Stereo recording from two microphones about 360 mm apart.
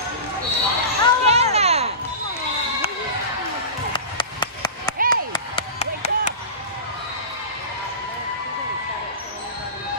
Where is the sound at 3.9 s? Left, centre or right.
Centre.